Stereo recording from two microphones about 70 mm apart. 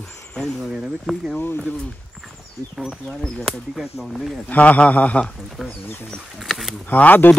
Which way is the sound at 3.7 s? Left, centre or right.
Centre.